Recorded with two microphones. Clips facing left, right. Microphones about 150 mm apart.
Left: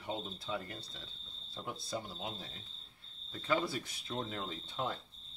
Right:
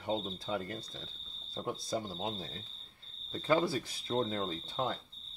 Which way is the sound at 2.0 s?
25° right (ahead or behind).